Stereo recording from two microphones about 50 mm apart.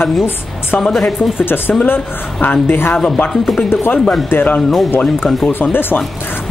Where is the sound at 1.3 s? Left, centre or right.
Left.